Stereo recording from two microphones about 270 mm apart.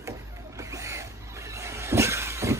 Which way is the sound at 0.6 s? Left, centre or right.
Centre.